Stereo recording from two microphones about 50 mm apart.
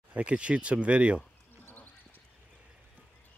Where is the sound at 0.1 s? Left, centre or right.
Right.